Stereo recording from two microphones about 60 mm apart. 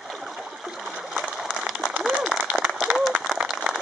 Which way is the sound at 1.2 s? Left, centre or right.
Centre.